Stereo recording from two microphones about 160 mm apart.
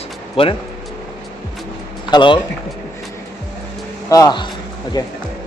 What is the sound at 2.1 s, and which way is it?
Speech, 30° left (ahead or behind).